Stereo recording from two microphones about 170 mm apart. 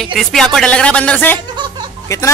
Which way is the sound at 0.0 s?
Centre (ahead or behind).